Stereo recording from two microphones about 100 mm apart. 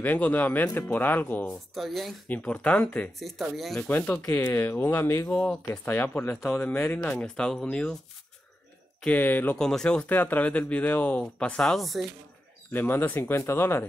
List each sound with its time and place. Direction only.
0.0 s speech: 15° left (ahead or behind)
1.7 s speech: centre (ahead or behind)
2.2 s speech: 15° left (ahead or behind)
3.2 s speech: centre (ahead or behind)
3.9 s speech: 15° left (ahead or behind)
5.3 s speech: 10° left (ahead or behind)
6.4 s speech: 5° left (ahead or behind)
9.0 s speech: 15° left (ahead or behind)
9.6 s speech: 5° left (ahead or behind)
12.7 s speech: 20° left (ahead or behind)